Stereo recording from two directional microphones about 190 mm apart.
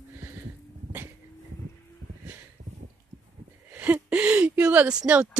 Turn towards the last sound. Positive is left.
turn(degrees=-5)  # may be behind; listen again after turning